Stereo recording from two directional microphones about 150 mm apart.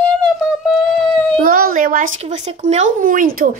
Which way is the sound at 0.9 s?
5° left (ahead or behind).